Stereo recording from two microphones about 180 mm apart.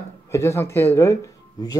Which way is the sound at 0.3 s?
15° left (ahead or behind).